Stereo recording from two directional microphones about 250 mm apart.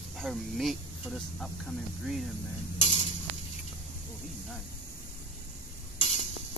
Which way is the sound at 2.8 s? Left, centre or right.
Left.